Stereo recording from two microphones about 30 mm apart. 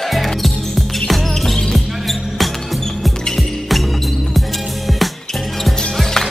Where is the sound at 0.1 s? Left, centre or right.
Centre.